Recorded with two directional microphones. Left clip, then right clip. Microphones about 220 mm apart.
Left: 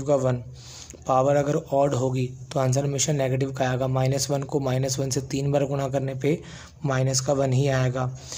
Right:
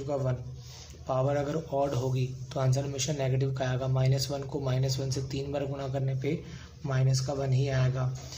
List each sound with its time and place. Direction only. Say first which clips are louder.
0.0 s a man's voice: left 10 dB; 50° left (ahead or behind)